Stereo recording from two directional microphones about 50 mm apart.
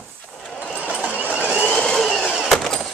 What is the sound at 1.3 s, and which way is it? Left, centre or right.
Vehicle, right.